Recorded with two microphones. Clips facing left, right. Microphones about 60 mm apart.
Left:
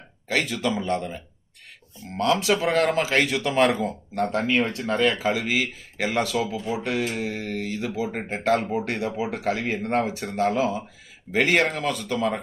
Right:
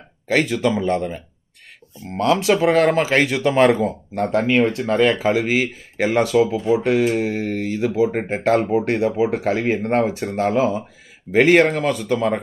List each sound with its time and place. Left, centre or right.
0.3 s speech: right
2.1 s speech: right
11.3 s speech: right